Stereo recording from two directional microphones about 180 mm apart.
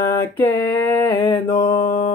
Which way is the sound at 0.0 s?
15° left (ahead or behind).